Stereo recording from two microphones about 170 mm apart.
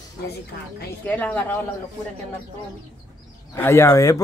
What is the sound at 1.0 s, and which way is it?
Speech, 10° left (ahead or behind).